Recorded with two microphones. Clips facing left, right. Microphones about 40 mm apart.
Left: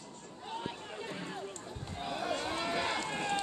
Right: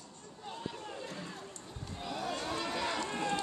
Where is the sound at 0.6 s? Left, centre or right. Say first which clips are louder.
Even; left.